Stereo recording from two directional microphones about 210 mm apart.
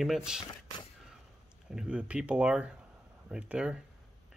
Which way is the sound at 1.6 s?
5° right (ahead or behind).